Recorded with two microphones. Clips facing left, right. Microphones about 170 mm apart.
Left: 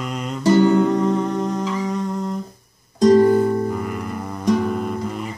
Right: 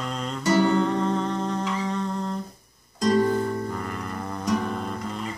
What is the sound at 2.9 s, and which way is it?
Music, 40° left (ahead or behind).